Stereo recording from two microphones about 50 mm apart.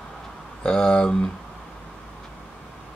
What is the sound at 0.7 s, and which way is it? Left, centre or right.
Speech, centre.